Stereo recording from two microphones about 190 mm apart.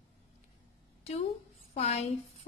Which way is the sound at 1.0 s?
35° left (ahead or behind).